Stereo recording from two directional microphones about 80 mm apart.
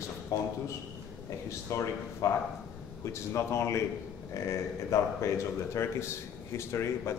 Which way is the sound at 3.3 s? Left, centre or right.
Left.